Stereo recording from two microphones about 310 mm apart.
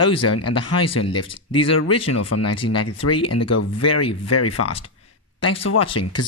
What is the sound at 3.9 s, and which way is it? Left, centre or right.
Speech, centre.